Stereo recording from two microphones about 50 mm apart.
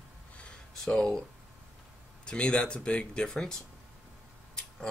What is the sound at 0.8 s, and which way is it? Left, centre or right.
Speech, centre.